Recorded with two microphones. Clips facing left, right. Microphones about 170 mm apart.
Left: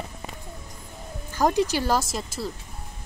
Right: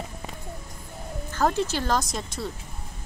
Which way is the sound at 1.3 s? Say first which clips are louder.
Left 2 dB; 15° left (ahead or behind).